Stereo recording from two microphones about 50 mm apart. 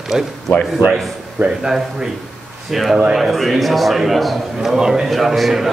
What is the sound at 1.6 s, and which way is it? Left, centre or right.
A man's voice, centre.